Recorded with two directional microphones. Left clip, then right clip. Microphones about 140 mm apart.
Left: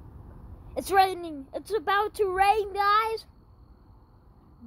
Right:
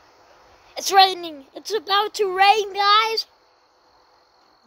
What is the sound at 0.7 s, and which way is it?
Speech, 5° right (ahead or behind).